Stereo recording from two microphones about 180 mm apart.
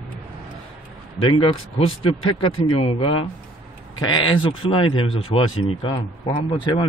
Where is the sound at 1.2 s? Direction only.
30° left (ahead or behind).